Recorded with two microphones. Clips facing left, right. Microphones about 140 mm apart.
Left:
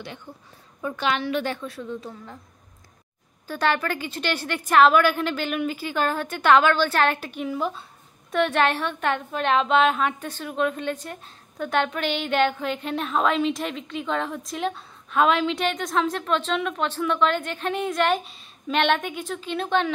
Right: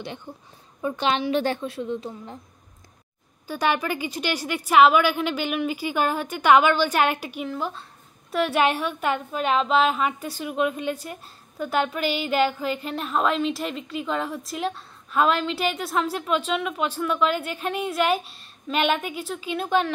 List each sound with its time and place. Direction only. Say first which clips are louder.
0.3 s speech: right 2 dB; 20° right (ahead or behind)
3.4 s a woman's voice: even; 10° right (ahead or behind)
7.4 s a woman's voice: left 4 dB; 5° left (ahead or behind)